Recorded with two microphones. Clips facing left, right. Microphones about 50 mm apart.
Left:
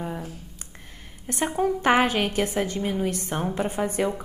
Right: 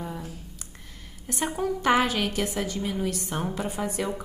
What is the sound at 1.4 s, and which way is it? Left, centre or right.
Speech, centre.